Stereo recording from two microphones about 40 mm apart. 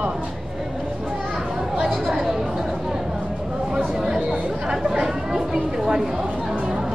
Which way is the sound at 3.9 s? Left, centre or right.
Centre.